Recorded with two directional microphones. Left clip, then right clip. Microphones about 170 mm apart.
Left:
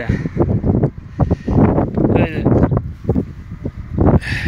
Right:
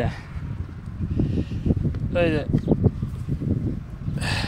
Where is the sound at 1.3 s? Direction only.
15° right (ahead or behind).